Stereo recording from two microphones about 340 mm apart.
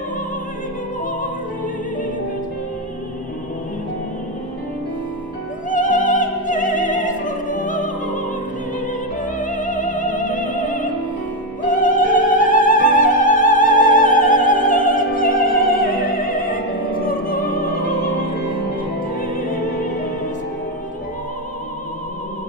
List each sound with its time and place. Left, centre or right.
5.7 s music: left
9.2 s music: left
11.6 s opera: left